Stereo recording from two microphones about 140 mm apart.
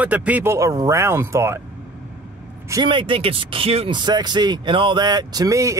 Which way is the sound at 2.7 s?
35° right (ahead or behind).